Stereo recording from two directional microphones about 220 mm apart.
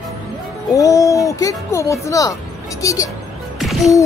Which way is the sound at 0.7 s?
15° left (ahead or behind).